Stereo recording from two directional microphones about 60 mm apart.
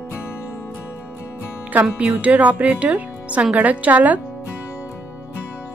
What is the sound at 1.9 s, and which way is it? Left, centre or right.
Speech, right.